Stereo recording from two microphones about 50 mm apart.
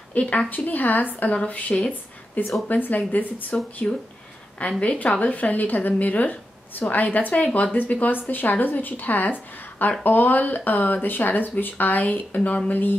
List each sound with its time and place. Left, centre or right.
0.1 s a woman's voice: left
3.8 s a woman's voice: centre; by 12.9 s left